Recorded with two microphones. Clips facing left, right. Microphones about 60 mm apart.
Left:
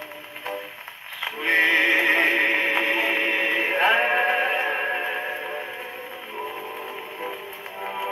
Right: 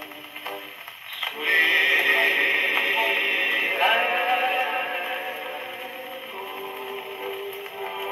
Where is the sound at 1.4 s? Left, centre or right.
Left.